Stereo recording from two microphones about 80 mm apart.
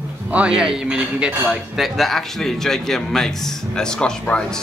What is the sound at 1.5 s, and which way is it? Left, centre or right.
A man's voice, centre.